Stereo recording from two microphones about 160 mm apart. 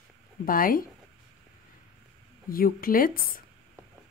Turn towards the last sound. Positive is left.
turn(degrees=65)  # may be behind; listen again after turning